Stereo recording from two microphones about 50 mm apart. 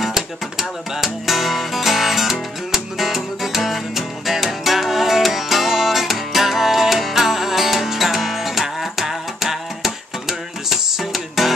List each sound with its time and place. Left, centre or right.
0.0 s music: centre